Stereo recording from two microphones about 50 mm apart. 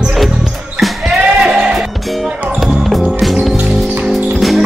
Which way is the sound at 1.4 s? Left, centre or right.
Centre.